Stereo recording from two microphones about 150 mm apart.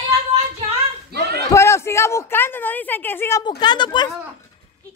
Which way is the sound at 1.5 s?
20° left (ahead or behind).